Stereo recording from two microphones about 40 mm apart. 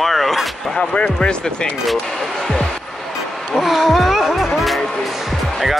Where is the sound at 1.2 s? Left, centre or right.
Left.